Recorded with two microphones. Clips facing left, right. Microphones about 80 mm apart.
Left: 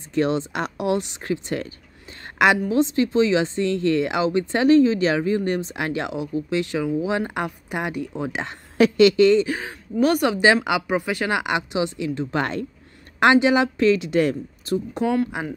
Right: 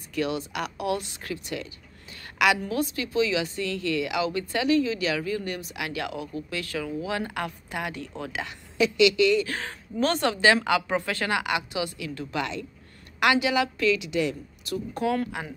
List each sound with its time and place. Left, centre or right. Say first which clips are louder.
0.1 s speech: left 7 dB; left
2.2 s a sound: left 5 dB; left
2.7 s speech: left 8 dB; left
8.7 s a woman's voice: left 6 dB; left
9.5 s speech: left 6 dB; centre
12.4 s speech: left 4 dB; left
13.2 s a woman's voice: left 6 dB; left
14.6 s speech: left 4 dB; left